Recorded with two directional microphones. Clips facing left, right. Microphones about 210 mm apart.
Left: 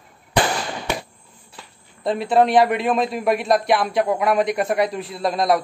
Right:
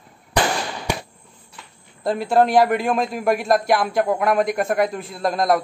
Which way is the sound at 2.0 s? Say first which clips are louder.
Even; centre (ahead or behind).